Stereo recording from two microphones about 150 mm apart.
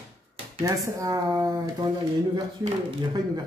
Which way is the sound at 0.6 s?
20° right (ahead or behind).